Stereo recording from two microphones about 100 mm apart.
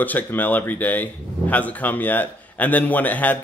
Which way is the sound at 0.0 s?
15° left (ahead or behind).